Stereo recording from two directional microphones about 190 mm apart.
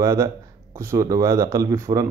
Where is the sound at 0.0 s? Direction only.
15° right (ahead or behind).